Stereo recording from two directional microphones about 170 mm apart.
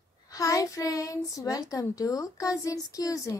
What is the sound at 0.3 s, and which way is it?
A child's voice, 20° left (ahead or behind).